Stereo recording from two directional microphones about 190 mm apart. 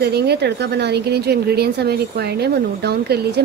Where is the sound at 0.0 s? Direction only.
60° right (ahead or behind).